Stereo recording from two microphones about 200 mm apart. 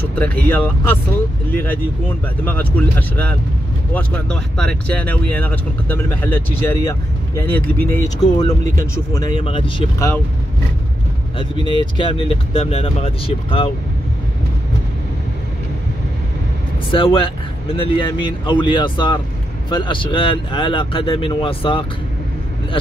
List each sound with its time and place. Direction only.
0.2 s speech: 10° left (ahead or behind)
9.4 s speech: 25° left (ahead or behind)
11.3 s speech: 25° left (ahead or behind)
16.9 s speech: 25° left (ahead or behind)